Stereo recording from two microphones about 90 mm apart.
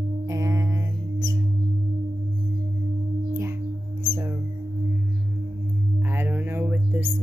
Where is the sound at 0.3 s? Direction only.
35° right (ahead or behind).